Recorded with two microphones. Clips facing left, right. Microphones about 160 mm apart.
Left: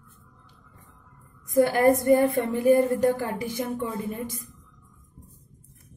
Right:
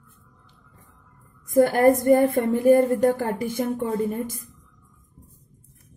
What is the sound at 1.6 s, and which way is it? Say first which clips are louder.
A woman's voice: right 3 dB; 45° right (ahead or behind).